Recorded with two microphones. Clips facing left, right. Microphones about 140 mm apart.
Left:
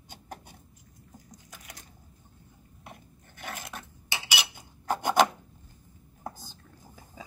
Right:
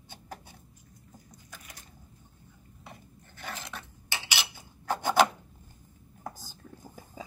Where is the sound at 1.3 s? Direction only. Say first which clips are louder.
Left 1 dB; 90° left.